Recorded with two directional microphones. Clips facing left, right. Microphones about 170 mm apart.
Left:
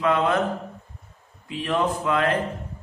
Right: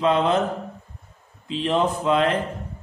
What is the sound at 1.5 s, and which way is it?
Speech, 20° right (ahead or behind).